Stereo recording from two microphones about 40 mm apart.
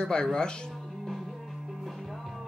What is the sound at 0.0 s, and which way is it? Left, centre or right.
Speech, centre.